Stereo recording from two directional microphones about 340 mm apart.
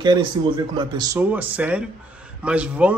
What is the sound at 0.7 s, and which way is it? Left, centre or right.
Speech, centre.